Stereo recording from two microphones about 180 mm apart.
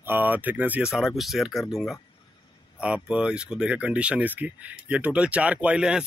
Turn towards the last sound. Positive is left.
turn(degrees=-5)  # may be behind; listen again after turning